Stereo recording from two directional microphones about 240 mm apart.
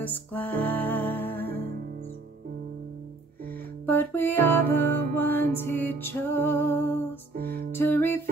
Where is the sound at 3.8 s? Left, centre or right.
Centre.